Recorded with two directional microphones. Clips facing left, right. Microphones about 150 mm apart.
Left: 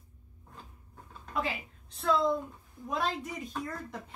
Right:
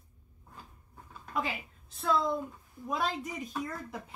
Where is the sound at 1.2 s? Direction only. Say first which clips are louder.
Even; centre (ahead or behind).